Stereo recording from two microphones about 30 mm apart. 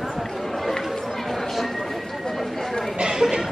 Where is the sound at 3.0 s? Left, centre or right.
Right.